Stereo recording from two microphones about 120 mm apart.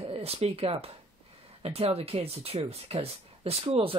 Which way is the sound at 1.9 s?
55° right (ahead or behind).